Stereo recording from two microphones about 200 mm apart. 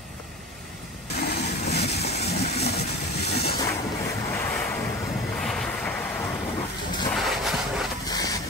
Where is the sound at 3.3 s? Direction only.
50° left (ahead or behind).